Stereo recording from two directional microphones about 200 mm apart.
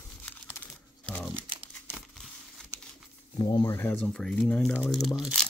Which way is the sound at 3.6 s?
10° left (ahead or behind).